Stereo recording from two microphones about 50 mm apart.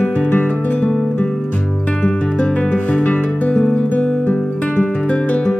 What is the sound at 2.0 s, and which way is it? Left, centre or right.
Music, left.